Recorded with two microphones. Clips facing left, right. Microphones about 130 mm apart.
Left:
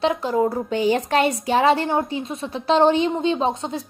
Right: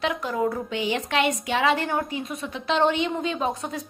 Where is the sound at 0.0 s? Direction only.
30° left (ahead or behind).